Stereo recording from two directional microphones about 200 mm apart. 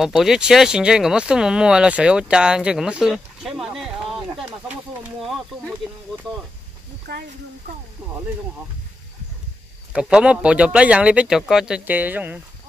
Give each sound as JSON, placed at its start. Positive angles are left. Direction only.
{"t": 0.0, "sound": "speech", "side_deg": 0}
{"t": 4.4, "sound": "snake", "side_deg": -5}
{"t": 7.1, "sound": "speech", "side_deg": -55}
{"t": 8.0, "sound": "speech", "side_deg": -5}
{"t": 9.9, "sound": "speech", "side_deg": -5}